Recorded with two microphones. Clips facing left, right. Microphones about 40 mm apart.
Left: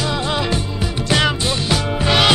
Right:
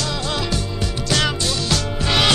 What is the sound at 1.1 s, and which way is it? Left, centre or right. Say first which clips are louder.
Music: left 3 dB; centre.